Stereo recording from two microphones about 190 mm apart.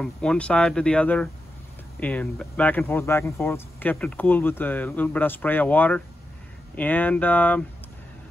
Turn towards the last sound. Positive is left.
turn(degrees=10)  # may be behind; listen again after turning